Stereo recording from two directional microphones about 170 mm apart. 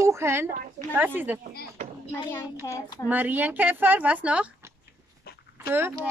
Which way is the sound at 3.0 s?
10° right (ahead or behind).